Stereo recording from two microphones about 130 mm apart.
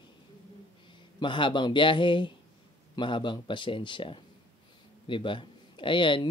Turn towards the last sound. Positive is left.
turn(degrees=40)  # may be behind; listen again after turning